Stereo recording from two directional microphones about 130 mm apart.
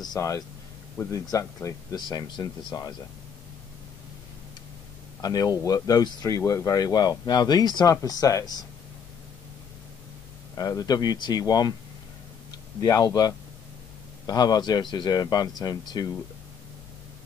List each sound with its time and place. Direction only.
0.0 s speech: 25° left (ahead or behind)
2.0 s speech: 35° left (ahead or behind)
5.2 s speech: 30° left (ahead or behind)
10.5 s speech: 25° left (ahead or behind)